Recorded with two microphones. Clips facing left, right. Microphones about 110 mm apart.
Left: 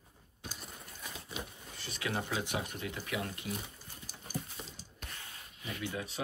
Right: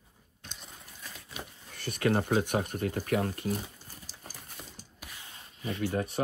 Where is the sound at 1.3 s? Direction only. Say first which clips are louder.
Right 1 dB; 60° right (ahead or behind).